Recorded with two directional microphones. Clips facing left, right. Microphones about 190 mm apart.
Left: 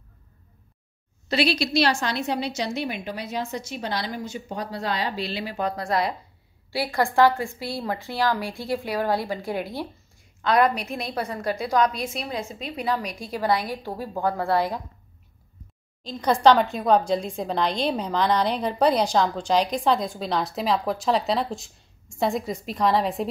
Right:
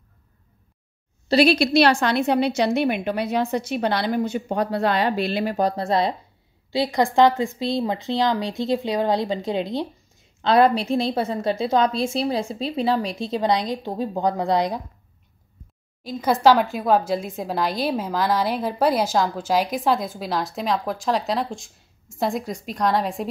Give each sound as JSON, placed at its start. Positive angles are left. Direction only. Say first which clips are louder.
{"t": 1.3, "sound": "a woman's voice", "louder": "right 6 dB", "side_deg": -50}
{"t": 16.0, "sound": "speech", "louder": "right 1 dB", "side_deg": -5}